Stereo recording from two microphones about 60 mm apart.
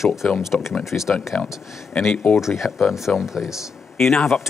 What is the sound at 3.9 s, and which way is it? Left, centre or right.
Speech, centre.